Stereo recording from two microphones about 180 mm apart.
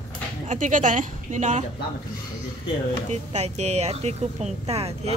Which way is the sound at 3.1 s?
40° right (ahead or behind).